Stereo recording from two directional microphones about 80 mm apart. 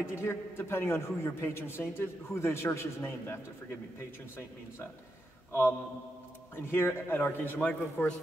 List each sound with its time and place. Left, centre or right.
0.1 s a man's voice: left
5.5 s a man's voice: left